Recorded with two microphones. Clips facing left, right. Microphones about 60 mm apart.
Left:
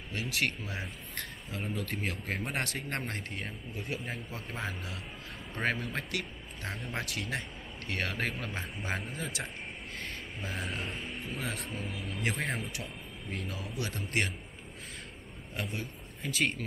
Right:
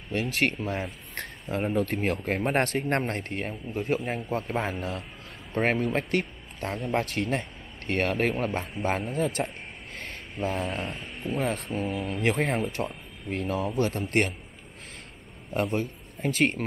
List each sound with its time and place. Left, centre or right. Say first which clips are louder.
0.1 s speech: right 7 dB; right
10.9 s speech: right 5 dB; centre
11.3 s speech: right 11 dB; right
15.5 s a man's voice: right 11 dB; right